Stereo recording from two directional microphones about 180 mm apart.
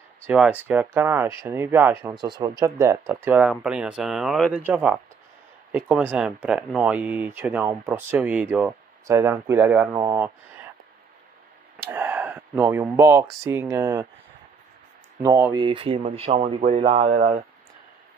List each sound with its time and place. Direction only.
0.3 s speech: 10° right (ahead or behind)
9.9 s speech: 20° right (ahead or behind)
11.9 s speech: 10° right (ahead or behind)
15.5 s speech: 30° right (ahead or behind)